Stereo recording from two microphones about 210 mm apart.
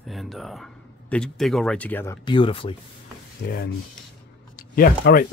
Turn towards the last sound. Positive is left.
turn(degrees=45)  # may be behind; listen again after turning